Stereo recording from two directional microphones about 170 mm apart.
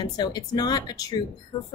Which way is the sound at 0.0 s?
25° left (ahead or behind).